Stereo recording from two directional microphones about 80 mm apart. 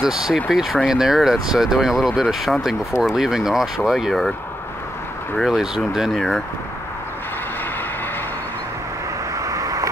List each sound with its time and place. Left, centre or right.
0.0 s speech: centre
5.4 s speech: centre
9.3 s vehicle: right